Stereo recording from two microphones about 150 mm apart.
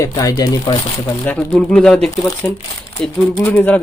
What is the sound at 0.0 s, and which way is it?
Speech, 20° left (ahead or behind).